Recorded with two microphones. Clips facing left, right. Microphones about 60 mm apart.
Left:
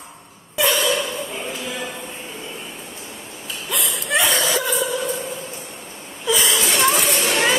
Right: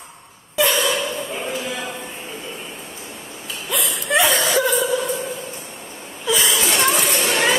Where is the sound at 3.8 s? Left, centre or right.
Right.